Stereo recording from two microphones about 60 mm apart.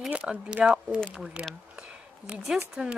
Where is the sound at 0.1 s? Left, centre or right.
Centre.